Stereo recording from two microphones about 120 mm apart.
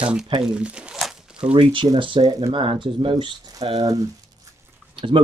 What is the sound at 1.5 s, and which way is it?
Speech, 45° right (ahead or behind).